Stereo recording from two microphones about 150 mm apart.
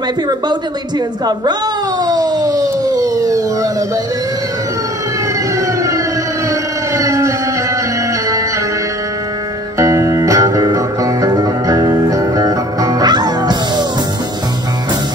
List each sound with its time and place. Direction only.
0.3 s a woman's voice: 25° right (ahead or behind)
2.0 s police car: 25° right (ahead or behind)
5.8 s siren: 20° right (ahead or behind)
6.5 s a sound: 20° right (ahead or behind)
9.8 s music: 20° right (ahead or behind)